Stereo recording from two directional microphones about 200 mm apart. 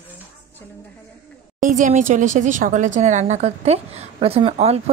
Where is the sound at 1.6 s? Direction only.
40° right (ahead or behind).